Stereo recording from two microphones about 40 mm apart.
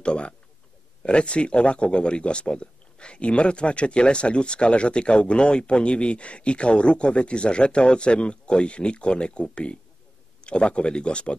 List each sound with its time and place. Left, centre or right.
0.0 s speech: left